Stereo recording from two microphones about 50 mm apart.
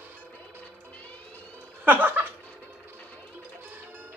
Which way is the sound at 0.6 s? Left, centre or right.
Left.